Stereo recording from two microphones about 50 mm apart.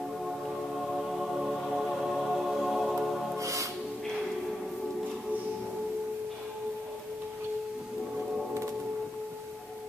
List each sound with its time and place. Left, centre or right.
0.9 s music: centre
3.3 s music: right